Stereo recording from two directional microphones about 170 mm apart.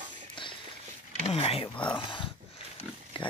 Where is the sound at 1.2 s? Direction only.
35° left (ahead or behind).